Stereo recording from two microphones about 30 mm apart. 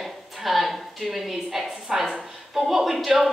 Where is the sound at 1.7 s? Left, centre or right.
Centre.